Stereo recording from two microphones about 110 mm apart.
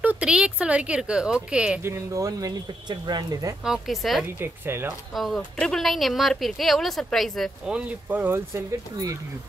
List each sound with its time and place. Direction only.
0.0 s a woman's voice: 10° right (ahead or behind)
1.8 s speech: 25° right (ahead or behind)
3.6 s speech: 5° right (ahead or behind)
4.4 s speech: 20° right (ahead or behind)
5.1 s speech: centre (ahead or behind)
7.7 s speech: 10° right (ahead or behind); by 9.1 s 30° right (ahead or behind)